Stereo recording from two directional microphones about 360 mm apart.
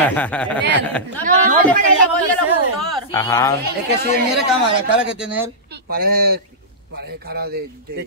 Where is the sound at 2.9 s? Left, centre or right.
Centre.